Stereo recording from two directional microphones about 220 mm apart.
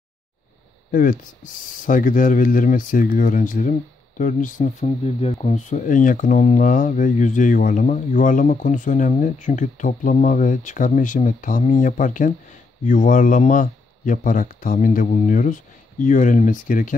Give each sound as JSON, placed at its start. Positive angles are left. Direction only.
{"t": 0.9, "sound": "speech", "side_deg": 40}